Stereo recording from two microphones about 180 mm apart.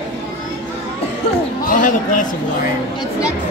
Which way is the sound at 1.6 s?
45° left (ahead or behind).